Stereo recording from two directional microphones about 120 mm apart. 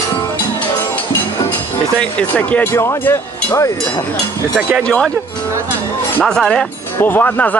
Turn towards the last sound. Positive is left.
turn(degrees=15)  # may be behind; listen again after turning